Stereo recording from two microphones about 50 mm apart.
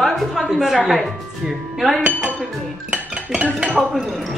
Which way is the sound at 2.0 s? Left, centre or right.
Centre.